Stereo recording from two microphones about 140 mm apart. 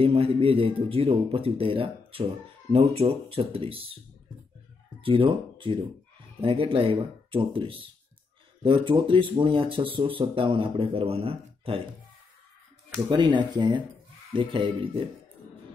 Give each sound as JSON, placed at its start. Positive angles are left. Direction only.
{"t": 0.0, "sound": "speech", "side_deg": -40}
{"t": 5.0, "sound": "speech", "side_deg": -40}
{"t": 13.1, "sound": "speech", "side_deg": -35}